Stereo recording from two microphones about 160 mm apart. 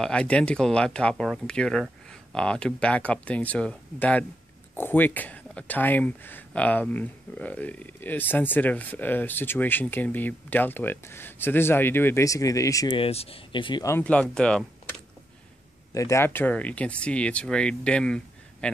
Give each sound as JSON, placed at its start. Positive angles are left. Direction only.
{"t": 0.0, "sound": "speech", "side_deg": 5}
{"t": 12.9, "sound": "speech", "side_deg": 35}
{"t": 13.8, "sound": "speech", "side_deg": 10}
{"t": 15.9, "sound": "speech", "side_deg": 20}